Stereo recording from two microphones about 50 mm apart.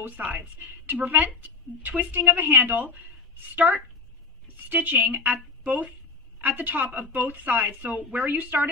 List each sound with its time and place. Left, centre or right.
0.0 s a woman's voice: right